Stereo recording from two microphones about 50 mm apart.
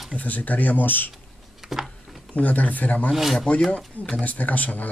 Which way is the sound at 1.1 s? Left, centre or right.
Centre.